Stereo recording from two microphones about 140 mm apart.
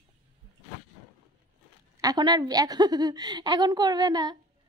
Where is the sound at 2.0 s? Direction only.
30° right (ahead or behind).